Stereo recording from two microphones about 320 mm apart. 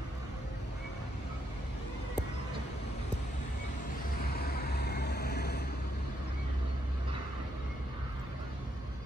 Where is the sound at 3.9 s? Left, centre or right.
Left.